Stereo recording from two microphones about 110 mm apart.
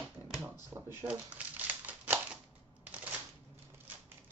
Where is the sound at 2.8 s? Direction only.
15° right (ahead or behind).